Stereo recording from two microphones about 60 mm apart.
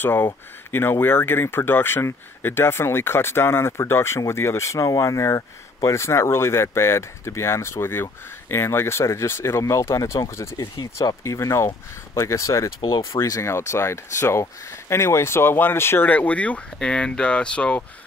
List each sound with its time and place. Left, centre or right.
0.0 s speech: left
5.9 s speech: left
16.1 s speech: left